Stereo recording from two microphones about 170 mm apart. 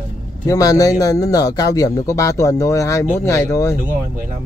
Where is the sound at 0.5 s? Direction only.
20° left (ahead or behind).